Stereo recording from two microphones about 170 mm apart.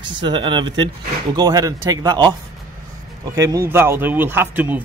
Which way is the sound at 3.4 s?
20° right (ahead or behind).